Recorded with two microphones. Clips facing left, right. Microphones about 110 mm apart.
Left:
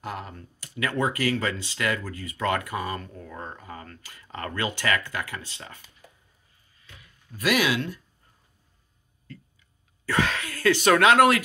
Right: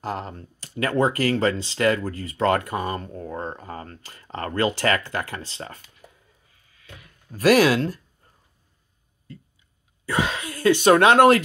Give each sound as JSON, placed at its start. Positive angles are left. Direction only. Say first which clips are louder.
{"t": 0.0, "sound": "speech", "louder": "right 5 dB", "side_deg": -35}
{"t": 6.6, "sound": "a sound", "louder": "right 6 dB", "side_deg": -90}
{"t": 7.2, "sound": "speech", "louder": "right 8 dB", "side_deg": -40}
{"t": 10.0, "sound": "speech", "louder": "right 1 dB", "side_deg": -20}